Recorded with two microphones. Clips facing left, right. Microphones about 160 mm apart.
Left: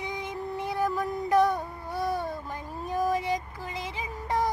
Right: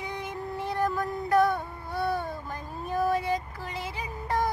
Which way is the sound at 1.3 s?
15° left (ahead or behind).